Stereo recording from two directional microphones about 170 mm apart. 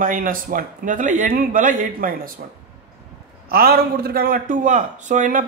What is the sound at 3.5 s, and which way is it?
Speech, 65° right (ahead or behind).